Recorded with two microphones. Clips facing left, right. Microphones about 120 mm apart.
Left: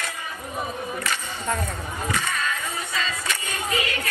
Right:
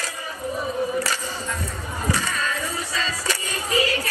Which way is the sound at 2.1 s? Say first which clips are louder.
Right 1 dB; 35° right (ahead or behind).